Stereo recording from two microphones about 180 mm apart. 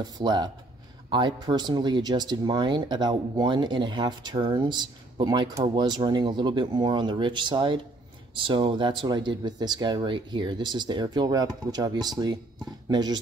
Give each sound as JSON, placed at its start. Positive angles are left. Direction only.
{"t": 0.0, "sound": "speech", "side_deg": -25}